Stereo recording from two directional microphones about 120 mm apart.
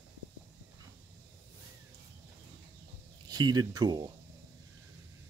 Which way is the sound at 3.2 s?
35° right (ahead or behind).